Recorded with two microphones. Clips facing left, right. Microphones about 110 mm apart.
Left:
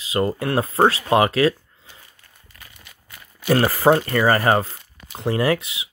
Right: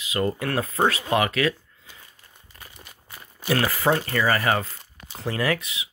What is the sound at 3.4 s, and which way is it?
Speech, 35° left (ahead or behind).